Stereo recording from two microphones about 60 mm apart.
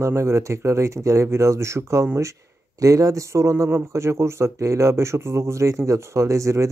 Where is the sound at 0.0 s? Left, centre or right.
Right.